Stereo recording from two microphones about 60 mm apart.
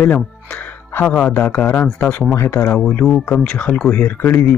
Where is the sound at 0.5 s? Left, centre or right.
Left.